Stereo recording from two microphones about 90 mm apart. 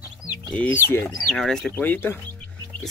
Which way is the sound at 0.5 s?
25° left (ahead or behind).